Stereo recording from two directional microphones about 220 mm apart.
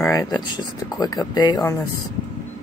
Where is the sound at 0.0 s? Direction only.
15° left (ahead or behind).